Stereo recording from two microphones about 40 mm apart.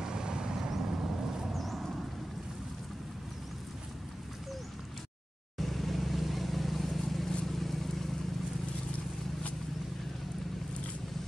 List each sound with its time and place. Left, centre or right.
0.0 s vehicle: centre
1.5 s vehicle: centre
5.6 s vehicle: centre